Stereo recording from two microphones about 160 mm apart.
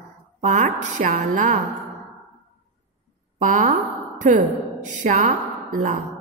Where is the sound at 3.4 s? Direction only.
55° right (ahead or behind).